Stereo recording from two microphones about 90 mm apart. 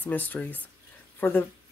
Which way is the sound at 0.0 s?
20° left (ahead or behind).